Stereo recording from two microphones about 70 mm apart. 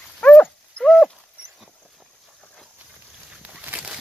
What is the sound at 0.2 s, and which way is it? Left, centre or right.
Dog, centre.